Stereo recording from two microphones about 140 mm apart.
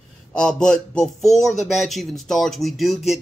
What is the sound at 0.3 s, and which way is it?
Speech, 5° left (ahead or behind).